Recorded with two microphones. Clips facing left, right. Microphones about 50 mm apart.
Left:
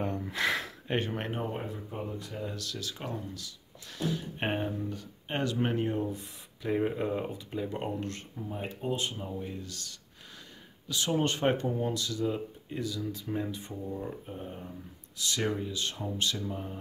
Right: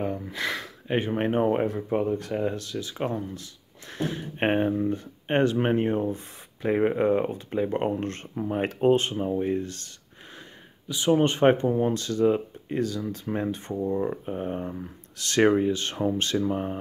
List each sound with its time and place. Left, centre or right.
0.0 s a sound: centre
0.9 s speech: centre
1.4 s speech: right
2.5 s speech: right
8.4 s speech: right
9.0 s speech: right
10.9 s speech: right
13.8 s speech: right